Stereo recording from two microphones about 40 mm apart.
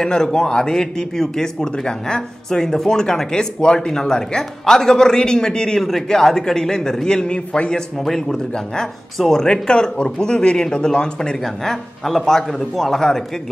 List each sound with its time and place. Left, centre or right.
0.0 s a man's voice: centre
5.8 s a man's voice: centre; by 7.7 s left
9.2 s a man's voice: centre
11.4 s a man's voice: centre